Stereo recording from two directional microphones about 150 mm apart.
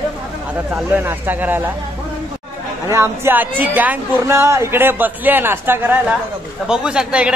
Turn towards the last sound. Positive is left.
turn(degrees=-5)  # may be behind; listen again after turning